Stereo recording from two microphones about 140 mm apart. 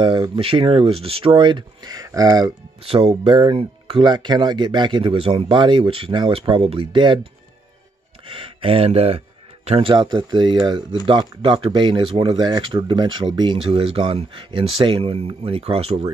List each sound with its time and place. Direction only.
0.4 s speech: 40° right (ahead or behind)
2.8 s speech: 40° right (ahead or behind)
8.3 s speech: 40° right (ahead or behind)